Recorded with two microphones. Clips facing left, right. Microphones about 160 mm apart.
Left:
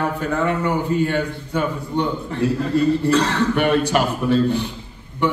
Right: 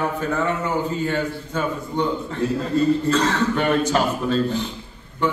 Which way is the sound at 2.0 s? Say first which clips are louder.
Left 1 dB; 15° left (ahead or behind).